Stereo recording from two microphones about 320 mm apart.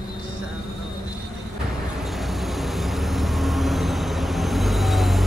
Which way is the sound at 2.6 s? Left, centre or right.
Centre.